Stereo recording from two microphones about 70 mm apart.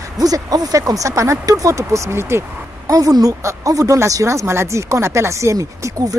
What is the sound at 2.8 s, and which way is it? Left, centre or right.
Speech, right.